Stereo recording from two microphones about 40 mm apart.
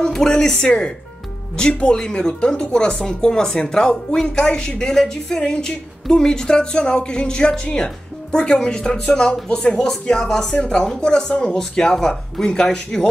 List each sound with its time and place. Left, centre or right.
0.0 s speech: centre